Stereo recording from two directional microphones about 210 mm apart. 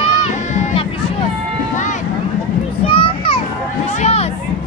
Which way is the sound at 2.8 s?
25° left (ahead or behind).